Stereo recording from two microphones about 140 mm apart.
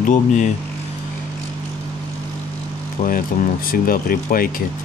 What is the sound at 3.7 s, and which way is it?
Speech, 90° left.